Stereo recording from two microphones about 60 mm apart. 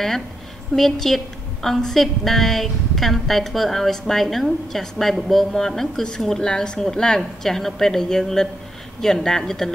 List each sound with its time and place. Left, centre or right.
0.7 s a woman's voice: centre